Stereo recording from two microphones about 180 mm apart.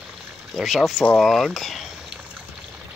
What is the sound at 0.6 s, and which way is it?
Speech, centre (ahead or behind).